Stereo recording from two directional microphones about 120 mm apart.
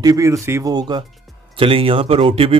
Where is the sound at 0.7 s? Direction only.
35° right (ahead or behind).